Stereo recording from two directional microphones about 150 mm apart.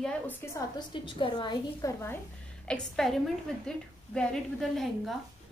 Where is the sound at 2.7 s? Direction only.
5° left (ahead or behind).